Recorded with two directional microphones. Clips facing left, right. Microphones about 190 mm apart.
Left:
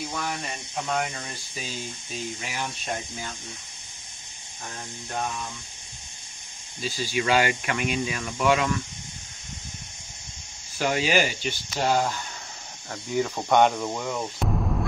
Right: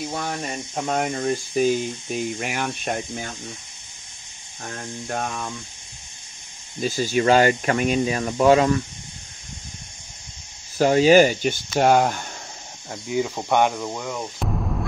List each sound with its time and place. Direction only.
0.1 s speech: 40° right (ahead or behind); by 3.3 s 60° right (ahead or behind)
5.0 s speech: 60° right (ahead or behind)
6.8 s speech: 45° right (ahead or behind)
10.8 s speech: 40° right (ahead or behind); by 12.3 s 55° right (ahead or behind)
12.9 s speech: 10° right (ahead or behind)